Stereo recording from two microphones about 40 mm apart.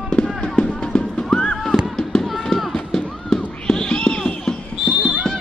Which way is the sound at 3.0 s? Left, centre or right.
Centre.